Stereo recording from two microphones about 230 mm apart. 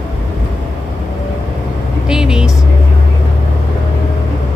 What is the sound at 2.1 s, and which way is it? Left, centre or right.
Vehicle, centre.